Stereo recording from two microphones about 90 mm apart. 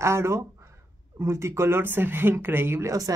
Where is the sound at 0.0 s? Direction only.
30° right (ahead or behind).